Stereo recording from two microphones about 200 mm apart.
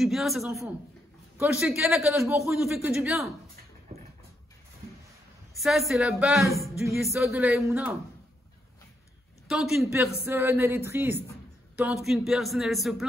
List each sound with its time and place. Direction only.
0.0 s a man's voice: centre (ahead or behind)
5.5 s a man's voice: centre (ahead or behind)
6.5 s music: 15° left (ahead or behind)
7.1 s speech: 15° right (ahead or behind)
9.5 s a man's voice: centre (ahead or behind)